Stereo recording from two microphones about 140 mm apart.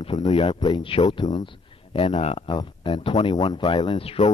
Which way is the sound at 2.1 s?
50° left (ahead or behind).